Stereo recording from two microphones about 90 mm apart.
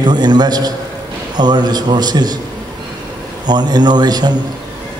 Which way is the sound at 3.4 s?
50° right (ahead or behind).